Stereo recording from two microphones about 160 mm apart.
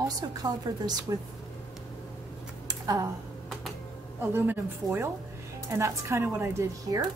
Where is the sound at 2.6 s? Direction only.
20° right (ahead or behind).